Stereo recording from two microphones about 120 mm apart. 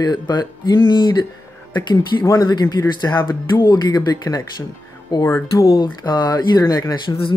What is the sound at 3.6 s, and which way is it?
Speech, 35° left (ahead or behind).